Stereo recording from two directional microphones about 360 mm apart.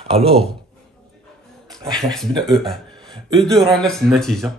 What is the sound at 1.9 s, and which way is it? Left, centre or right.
Speech, centre.